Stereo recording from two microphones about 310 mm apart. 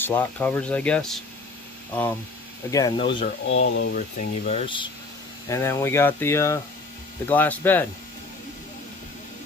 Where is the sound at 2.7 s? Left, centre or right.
Centre.